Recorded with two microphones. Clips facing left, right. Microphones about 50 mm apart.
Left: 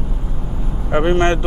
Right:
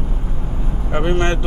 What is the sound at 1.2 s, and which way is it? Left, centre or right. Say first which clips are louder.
Speech: left 4 dB; left.